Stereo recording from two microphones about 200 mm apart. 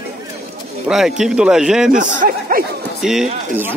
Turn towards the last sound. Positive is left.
turn(degrees=-5)  # may be behind; listen again after turning